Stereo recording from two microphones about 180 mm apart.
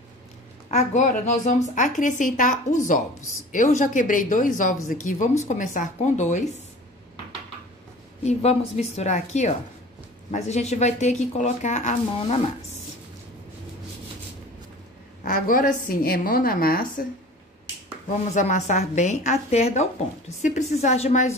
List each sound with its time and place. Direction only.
0.7 s a woman's voice: 40° left (ahead or behind)
8.2 s speech: 35° left (ahead or behind)
15.2 s a woman's voice: 50° left (ahead or behind)
18.3 s speech: 45° left (ahead or behind)